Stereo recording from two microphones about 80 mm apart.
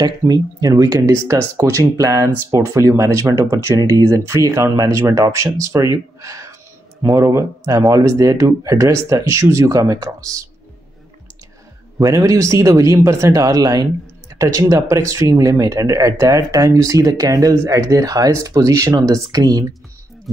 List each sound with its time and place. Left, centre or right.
0.3 s speech: right
1.1 s speech: right
12.0 s speech: right